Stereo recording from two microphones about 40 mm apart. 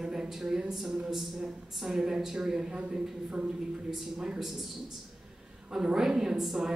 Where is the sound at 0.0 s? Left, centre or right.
Centre.